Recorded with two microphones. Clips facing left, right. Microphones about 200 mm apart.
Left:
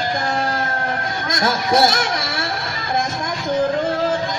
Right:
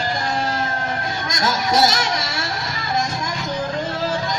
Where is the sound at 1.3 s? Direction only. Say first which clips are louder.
Left 2 dB; 55° left (ahead or behind).